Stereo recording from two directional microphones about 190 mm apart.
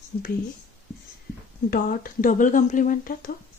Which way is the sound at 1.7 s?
50° left (ahead or behind).